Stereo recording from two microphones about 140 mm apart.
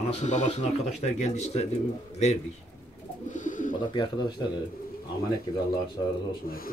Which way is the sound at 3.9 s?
35° left (ahead or behind).